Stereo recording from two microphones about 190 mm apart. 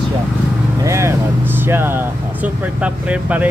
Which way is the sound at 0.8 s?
15° right (ahead or behind).